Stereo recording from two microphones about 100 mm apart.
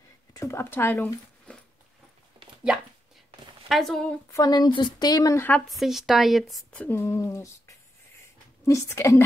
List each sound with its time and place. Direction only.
0.3 s speech: 30° left (ahead or behind)
1.0 s a sound: 10° left (ahead or behind)
3.6 s speech: centre (ahead or behind)
4.3 s a woman's voice: 40° left (ahead or behind)
5.7 s speech: centre (ahead or behind)
6.7 s speech: 15° left (ahead or behind)
7.0 s a woman's voice: 30° left (ahead or behind)